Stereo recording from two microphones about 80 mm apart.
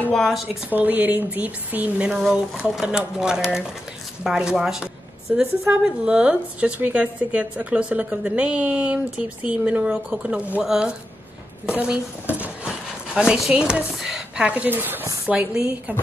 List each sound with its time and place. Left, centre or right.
0.1 s a woman's voice: centre
0.7 s a woman's voice: right
15.2 s speech: centre